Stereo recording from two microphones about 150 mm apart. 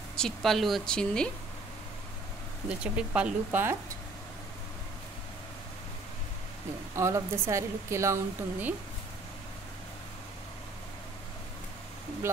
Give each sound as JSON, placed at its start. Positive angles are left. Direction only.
{"t": 0.1, "sound": "speech", "side_deg": 5}
{"t": 2.8, "sound": "speech", "side_deg": -10}
{"t": 7.0, "sound": "a woman's voice", "side_deg": -20}